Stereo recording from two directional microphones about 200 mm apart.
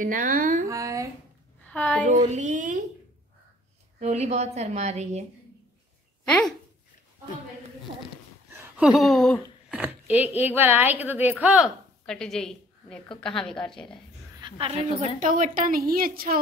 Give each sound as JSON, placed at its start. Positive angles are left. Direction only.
{"t": 0.0, "sound": "a woman's voice", "side_deg": -45}
{"t": 0.7, "sound": "speech", "side_deg": -15}
{"t": 1.7, "sound": "a woman's voice", "side_deg": 5}
{"t": 2.3, "sound": "a woman's voice", "side_deg": -40}
{"t": 4.0, "sound": "a woman's voice", "side_deg": -35}
{"t": 6.2, "sound": "speech", "side_deg": 5}
{"t": 8.5, "sound": "a sound", "side_deg": -10}
{"t": 9.8, "sound": "a sound", "side_deg": -10}
{"t": 10.3, "sound": "a woman's voice", "side_deg": -10}
{"t": 14.4, "sound": "a woman's voice", "side_deg": -30}